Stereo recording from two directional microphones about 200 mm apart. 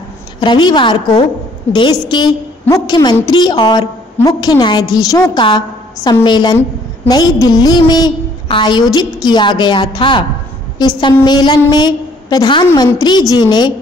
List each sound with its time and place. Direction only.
0.4 s a woman's voice: 25° left (ahead or behind)